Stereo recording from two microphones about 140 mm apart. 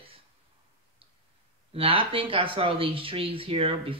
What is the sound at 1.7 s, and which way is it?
Speech, 40° right (ahead or behind).